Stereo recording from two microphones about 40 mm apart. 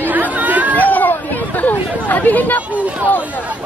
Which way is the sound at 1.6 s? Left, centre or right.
Left.